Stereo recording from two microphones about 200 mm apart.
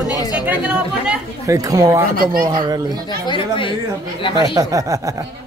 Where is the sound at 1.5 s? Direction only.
15° right (ahead or behind).